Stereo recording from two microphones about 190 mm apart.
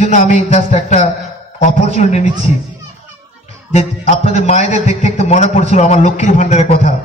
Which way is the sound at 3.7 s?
30° left (ahead or behind).